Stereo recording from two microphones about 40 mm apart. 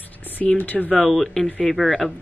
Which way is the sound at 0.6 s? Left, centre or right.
Left.